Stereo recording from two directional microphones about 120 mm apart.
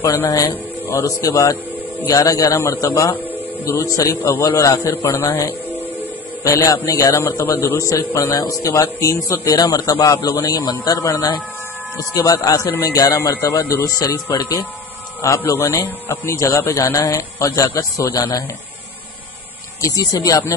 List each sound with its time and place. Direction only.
0.0 s a man's voice: 20° left (ahead or behind)
19.8 s a man's voice: 30° left (ahead or behind)